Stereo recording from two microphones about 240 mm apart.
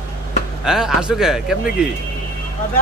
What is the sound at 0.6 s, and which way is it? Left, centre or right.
A man's voice, centre.